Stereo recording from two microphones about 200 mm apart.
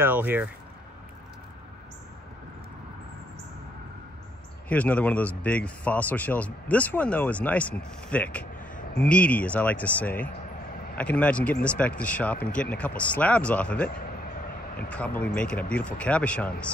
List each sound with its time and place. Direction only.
0.0 s speech: 10° right (ahead or behind)
4.6 s speech: 5° left (ahead or behind)
8.5 s a sound: 40° left (ahead or behind)
9.0 s speech: 5° left (ahead or behind)
14.9 s speech: 5° left (ahead or behind)